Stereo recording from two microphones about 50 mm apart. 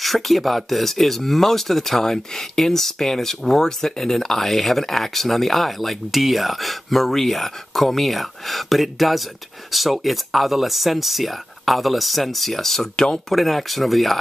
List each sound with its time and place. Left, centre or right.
0.0 s speech: centre
13.3 s speech: centre